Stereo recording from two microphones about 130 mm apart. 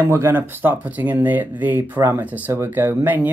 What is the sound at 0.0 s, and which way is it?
Speech, 20° right (ahead or behind).